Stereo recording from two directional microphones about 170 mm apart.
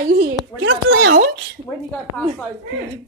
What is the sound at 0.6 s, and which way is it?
Speech, 90° right.